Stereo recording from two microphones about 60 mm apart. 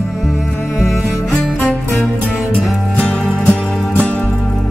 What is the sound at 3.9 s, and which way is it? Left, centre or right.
Music, left.